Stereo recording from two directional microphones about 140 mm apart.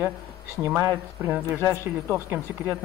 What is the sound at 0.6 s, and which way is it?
Speech, 15° right (ahead or behind).